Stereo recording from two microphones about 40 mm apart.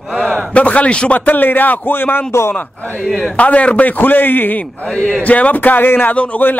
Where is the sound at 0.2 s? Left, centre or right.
Left.